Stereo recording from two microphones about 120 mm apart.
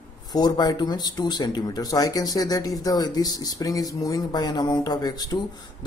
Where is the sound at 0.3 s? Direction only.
35° left (ahead or behind).